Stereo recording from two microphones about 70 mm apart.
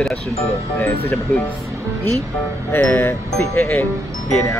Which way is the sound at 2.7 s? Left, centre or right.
Left.